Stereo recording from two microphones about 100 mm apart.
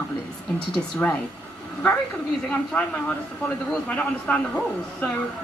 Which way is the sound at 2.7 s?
10° left (ahead or behind).